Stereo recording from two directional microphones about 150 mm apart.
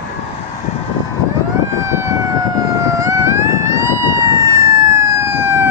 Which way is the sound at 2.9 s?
20° right (ahead or behind).